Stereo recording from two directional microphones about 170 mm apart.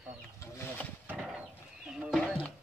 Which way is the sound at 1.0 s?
5° right (ahead or behind).